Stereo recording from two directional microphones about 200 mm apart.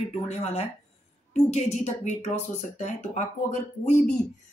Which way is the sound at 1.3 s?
35° left (ahead or behind).